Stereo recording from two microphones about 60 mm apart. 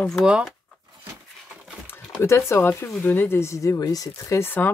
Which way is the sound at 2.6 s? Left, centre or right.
Left.